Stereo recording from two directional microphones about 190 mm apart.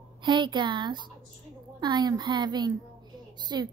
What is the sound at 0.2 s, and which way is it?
A woman's voice, 25° right (ahead or behind).